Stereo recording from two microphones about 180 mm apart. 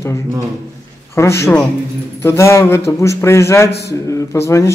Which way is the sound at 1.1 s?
15° left (ahead or behind).